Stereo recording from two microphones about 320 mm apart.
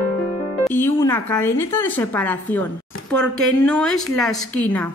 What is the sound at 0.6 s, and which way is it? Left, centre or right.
Speech, centre.